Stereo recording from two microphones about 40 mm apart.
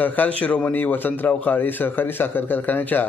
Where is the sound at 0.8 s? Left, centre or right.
Left.